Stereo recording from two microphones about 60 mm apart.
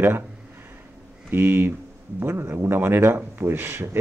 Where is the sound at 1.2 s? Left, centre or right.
Right.